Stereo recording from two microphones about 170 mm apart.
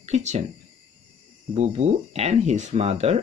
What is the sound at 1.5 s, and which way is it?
Speech, 40° right (ahead or behind).